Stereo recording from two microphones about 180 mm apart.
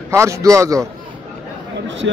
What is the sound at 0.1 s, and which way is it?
Speech, 15° right (ahead or behind).